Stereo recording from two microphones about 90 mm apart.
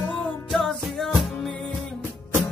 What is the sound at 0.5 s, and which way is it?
Music, centre (ahead or behind).